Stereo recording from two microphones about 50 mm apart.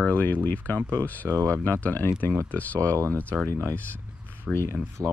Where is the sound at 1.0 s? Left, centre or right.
Left.